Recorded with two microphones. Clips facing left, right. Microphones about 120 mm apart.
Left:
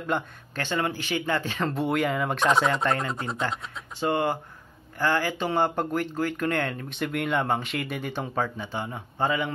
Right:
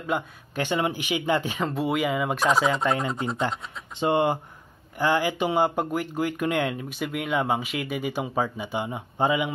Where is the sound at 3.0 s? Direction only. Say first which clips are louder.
Right 3 dB; 15° right (ahead or behind).